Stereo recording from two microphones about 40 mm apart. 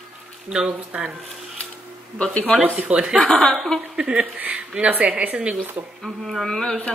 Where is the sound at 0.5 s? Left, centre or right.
Right.